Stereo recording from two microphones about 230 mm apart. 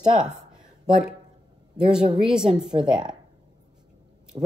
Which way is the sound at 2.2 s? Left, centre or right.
Centre.